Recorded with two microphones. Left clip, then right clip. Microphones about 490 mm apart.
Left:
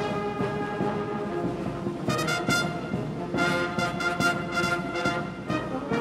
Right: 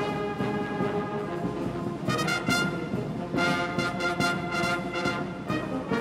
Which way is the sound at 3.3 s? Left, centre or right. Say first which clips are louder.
Left 1 dB; right.